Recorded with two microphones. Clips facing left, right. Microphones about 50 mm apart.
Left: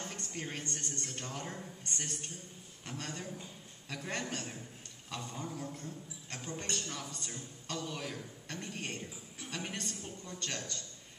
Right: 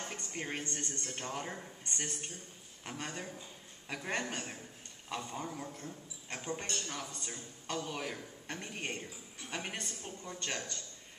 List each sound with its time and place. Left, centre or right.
0.0 s a man's voice: centre